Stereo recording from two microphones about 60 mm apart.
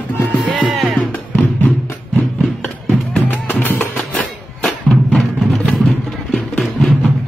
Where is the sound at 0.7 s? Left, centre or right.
Centre.